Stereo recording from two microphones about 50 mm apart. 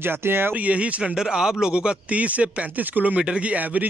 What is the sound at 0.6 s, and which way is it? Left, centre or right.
Speech, right.